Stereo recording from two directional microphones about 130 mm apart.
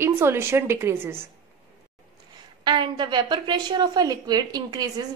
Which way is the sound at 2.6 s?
35° right (ahead or behind).